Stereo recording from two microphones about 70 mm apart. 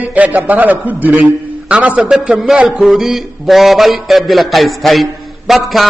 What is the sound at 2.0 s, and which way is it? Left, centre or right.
Speech, centre.